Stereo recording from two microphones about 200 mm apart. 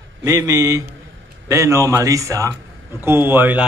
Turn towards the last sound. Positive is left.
turn(degrees=-10)  # may be behind; listen again after turning